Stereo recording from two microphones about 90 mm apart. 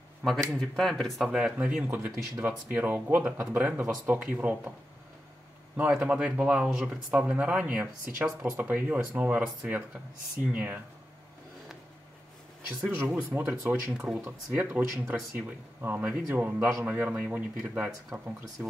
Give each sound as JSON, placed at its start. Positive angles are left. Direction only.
{"t": 0.2, "sound": "speech", "side_deg": 0}
{"t": 5.8, "sound": "speech", "side_deg": -15}
{"t": 12.9, "sound": "speech", "side_deg": -20}
{"t": 13.8, "sound": "speech", "side_deg": -10}
{"t": 14.2, "sound": "speech", "side_deg": -20}